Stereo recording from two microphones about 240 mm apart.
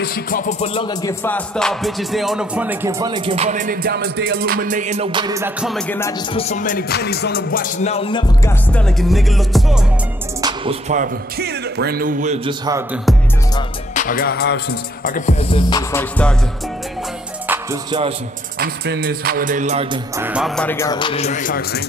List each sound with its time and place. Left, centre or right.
0.0 s music: left; by 3.2 s centre
3.3 s music: right; by 6.1 s centre
6.3 s music: left
8.7 s music: centre
10.4 s music: right
12.4 s speech: centre
13.9 s music: left
15.9 s speech: centre
18.6 s music: right
20.2 s speech: centre; by 21.8 s left